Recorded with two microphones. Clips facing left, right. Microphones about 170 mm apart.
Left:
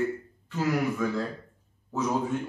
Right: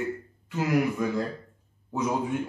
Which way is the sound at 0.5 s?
15° right (ahead or behind).